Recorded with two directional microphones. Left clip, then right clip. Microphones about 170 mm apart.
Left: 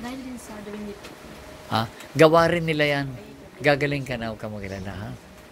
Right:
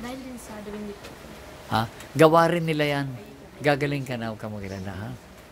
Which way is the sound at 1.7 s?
20° right (ahead or behind).